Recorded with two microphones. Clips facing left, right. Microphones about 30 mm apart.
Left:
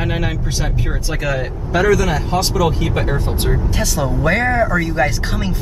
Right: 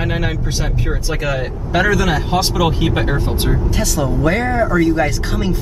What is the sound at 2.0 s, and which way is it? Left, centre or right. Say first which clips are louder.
Speech: right 1 dB; right.